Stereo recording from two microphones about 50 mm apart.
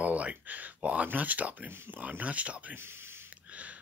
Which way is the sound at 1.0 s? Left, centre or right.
Right.